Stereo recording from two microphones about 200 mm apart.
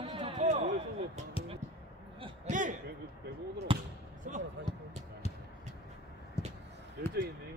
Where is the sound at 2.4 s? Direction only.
40° right (ahead or behind).